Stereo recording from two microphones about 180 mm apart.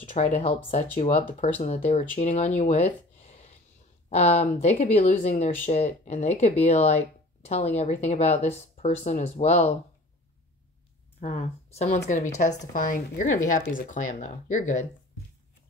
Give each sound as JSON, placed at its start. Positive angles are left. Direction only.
{"t": 0.1, "sound": "speech", "side_deg": 35}
{"t": 11.1, "sound": "a woman's voice", "side_deg": 35}